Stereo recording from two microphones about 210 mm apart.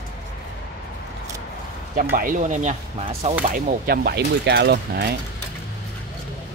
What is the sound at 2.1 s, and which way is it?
Speech, 40° right (ahead or behind).